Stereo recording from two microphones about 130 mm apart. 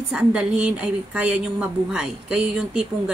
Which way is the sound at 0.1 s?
5° right (ahead or behind).